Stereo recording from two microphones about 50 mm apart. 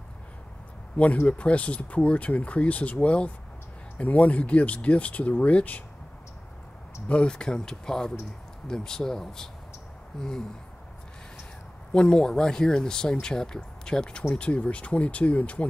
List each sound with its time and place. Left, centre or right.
0.9 s speech: left
7.1 s speech: centre
11.9 s speech: centre